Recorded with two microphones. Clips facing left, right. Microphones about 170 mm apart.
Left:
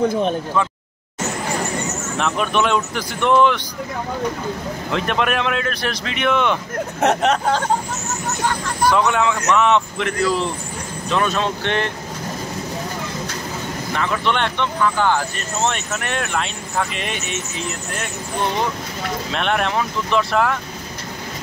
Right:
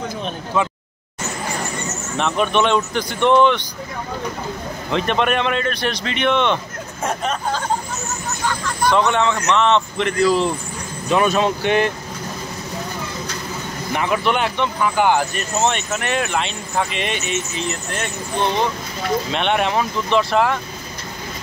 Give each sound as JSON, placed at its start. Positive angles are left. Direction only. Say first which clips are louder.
{"t": 2.1, "sound": "speech", "louder": "right 2 dB", "side_deg": 0}
{"t": 4.9, "sound": "speech", "louder": "right 2 dB", "side_deg": 0}
{"t": 7.0, "sound": "speech", "louder": "left 6 dB", "side_deg": 75}
{"t": 8.9, "sound": "speech", "louder": "right 3 dB", "side_deg": 5}
{"t": 11.1, "sound": "speech", "louder": "right 4 dB", "side_deg": -10}
{"t": 13.9, "sound": "speech", "louder": "right 2 dB", "side_deg": -15}
{"t": 15.7, "sound": "speech", "louder": "right 3 dB", "side_deg": 0}
{"t": 19.3, "sound": "speech", "louder": "left 1 dB", "side_deg": 0}